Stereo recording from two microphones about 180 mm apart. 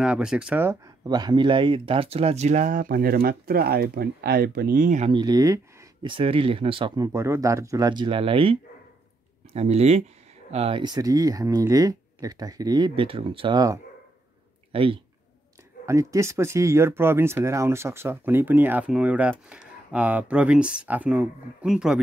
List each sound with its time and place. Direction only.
0.0 s speech: 5° right (ahead or behind)
1.0 s speech: 20° right (ahead or behind)
5.2 s speech: 20° right (ahead or behind)
7.1 s speech: 15° right (ahead or behind)
15.8 s speech: 15° right (ahead or behind)